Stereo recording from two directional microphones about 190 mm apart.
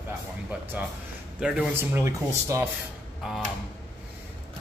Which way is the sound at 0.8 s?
10° right (ahead or behind).